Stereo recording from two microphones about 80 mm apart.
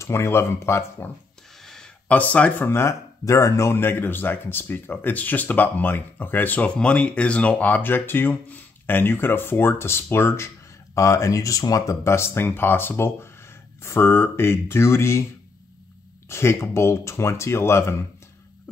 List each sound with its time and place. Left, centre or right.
0.0 s speech: left
1.6 s a sound: centre
2.0 s speech: centre
2.7 s speech: left
16.3 s speech: left